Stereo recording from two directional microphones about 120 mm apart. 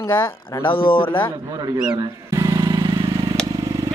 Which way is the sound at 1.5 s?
40° right (ahead or behind).